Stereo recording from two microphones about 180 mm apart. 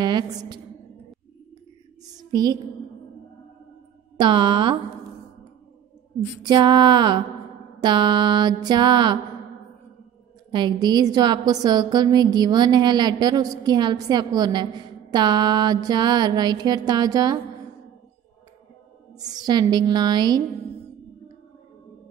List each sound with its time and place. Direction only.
0.0 s a woman's voice: 25° right (ahead or behind)
2.3 s a woman's voice: 20° right (ahead or behind)
4.2 s a woman's voice: 25° right (ahead or behind)
6.4 s a woman's voice: 25° right (ahead or behind)
10.5 s a woman's voice: 25° right (ahead or behind)
19.2 s a woman's voice: 20° right (ahead or behind)